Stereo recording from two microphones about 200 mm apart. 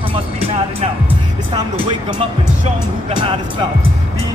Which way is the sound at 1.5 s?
25° right (ahead or behind).